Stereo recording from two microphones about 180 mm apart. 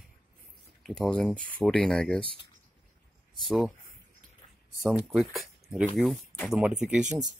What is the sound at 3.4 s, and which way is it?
Speech, centre (ahead or behind).